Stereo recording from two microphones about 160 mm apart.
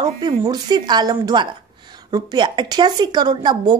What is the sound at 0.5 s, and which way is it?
A woman's voice, 25° right (ahead or behind).